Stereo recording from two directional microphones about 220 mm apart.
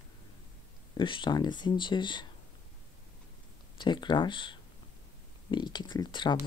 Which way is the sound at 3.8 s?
20° left (ahead or behind).